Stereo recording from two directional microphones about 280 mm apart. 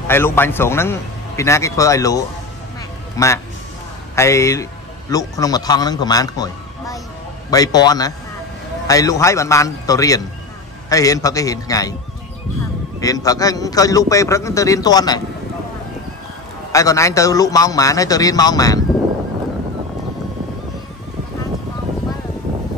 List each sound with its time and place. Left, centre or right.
0.1 s a man's voice: centre
13.0 s a man's voice: centre
16.7 s a man's voice: centre